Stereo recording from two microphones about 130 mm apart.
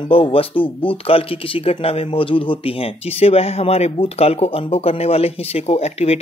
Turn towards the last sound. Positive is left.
turn(degrees=55)  # may be behind; listen again after turning